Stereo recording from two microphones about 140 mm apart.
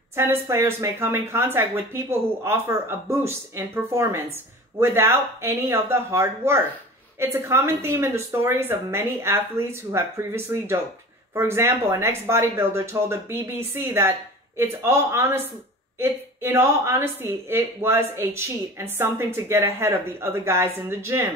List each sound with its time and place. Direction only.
0.1 s speech: 15° right (ahead or behind)